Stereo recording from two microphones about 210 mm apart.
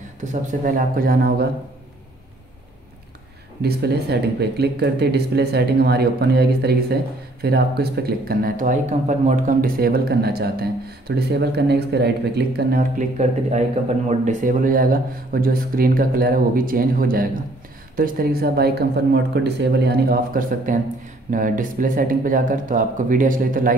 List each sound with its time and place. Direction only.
0.2 s speech: 35° right (ahead or behind)
3.6 s speech: 50° right (ahead or behind)
13.2 s speech: 30° right (ahead or behind)